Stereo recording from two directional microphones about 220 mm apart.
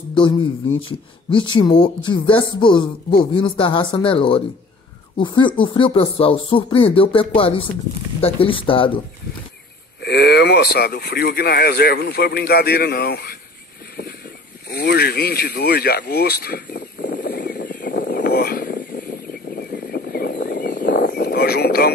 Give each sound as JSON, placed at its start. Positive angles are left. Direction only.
{"t": 0.1, "sound": "speech", "side_deg": 20}
{"t": 1.5, "sound": "speech", "side_deg": 20}
{"t": 10.0, "sound": "speech", "side_deg": 50}
{"t": 14.7, "sound": "a sound", "side_deg": 45}